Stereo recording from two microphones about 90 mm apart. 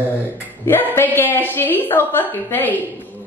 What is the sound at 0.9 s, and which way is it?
A woman's voice, 20° left (ahead or behind).